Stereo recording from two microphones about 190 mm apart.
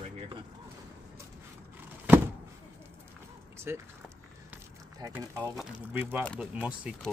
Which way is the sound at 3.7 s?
10° right (ahead or behind).